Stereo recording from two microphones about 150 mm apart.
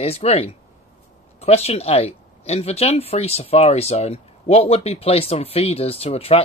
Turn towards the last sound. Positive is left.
turn(degrees=40)  # may be behind; listen again after turning